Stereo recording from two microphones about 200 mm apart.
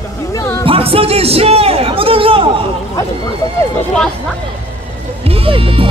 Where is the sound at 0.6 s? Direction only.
30° right (ahead or behind).